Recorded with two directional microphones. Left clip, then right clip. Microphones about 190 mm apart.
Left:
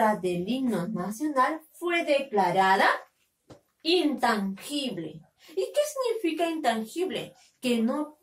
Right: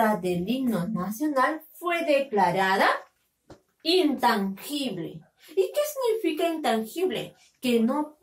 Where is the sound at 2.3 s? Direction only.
15° left (ahead or behind).